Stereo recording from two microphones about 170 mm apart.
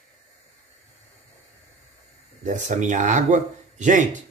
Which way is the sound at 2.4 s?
45° right (ahead or behind).